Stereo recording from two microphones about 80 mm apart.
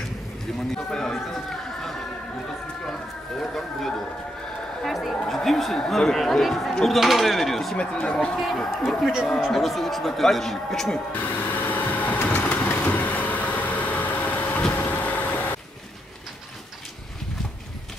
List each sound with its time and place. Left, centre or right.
0.7 s a sound: centre
2.8 s speech: centre
7.7 s speech: centre
8.4 s speech: centre
11.1 s vehicle: left